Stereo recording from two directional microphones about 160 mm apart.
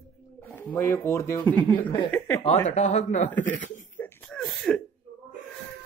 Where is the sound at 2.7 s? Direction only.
45° left (ahead or behind).